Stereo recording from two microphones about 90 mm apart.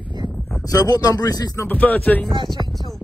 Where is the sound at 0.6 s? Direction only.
40° left (ahead or behind).